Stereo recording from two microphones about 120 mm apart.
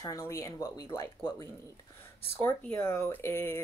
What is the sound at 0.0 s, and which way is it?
Speech, 25° left (ahead or behind).